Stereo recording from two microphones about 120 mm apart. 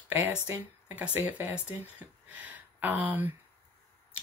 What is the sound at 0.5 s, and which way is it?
Speech, 15° right (ahead or behind).